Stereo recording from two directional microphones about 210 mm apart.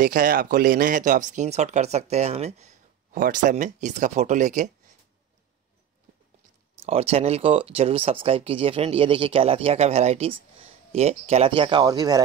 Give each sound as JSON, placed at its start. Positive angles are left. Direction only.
{"t": 0.0, "sound": "speech", "side_deg": -45}
{"t": 6.9, "sound": "speech", "side_deg": -30}